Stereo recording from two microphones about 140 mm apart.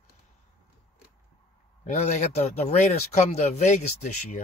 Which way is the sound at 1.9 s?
55° left (ahead or behind).